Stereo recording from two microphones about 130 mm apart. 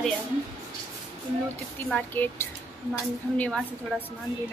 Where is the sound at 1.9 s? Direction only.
10° left (ahead or behind).